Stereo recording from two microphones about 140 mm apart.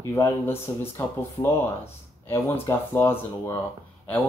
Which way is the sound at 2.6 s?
20° left (ahead or behind).